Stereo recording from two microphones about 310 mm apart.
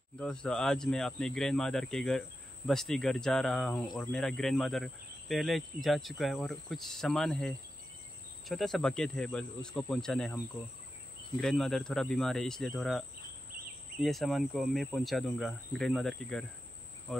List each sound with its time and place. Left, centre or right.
0.2 s speech: centre
11.4 s speech: centre
14.0 s speech: centre